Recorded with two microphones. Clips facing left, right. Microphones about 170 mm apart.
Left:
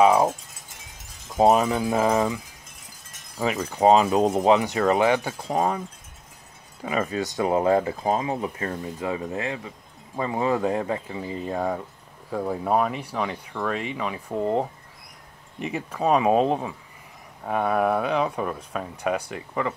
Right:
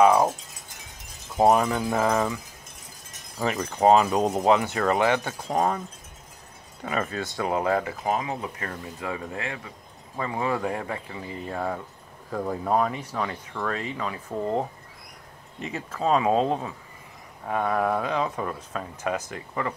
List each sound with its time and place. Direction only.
1.3 s speech: 20° left (ahead or behind)
3.3 s speech: 5° left (ahead or behind)
3.9 s speech: 20° left (ahead or behind)
6.8 s speech: 10° left (ahead or behind)
15.6 s speech: 15° left (ahead or behind)